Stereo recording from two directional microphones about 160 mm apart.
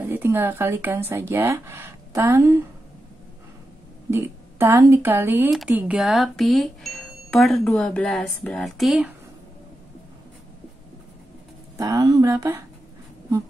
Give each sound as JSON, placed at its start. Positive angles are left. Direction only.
{"t": 0.1, "sound": "speech", "side_deg": -15}
{"t": 4.1, "sound": "speech", "side_deg": -15}
{"t": 5.5, "sound": "speech", "side_deg": 0}
{"t": 11.8, "sound": "speech", "side_deg": -20}